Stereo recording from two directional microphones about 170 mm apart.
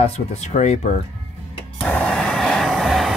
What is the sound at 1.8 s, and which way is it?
Vehicle, 10° left (ahead or behind).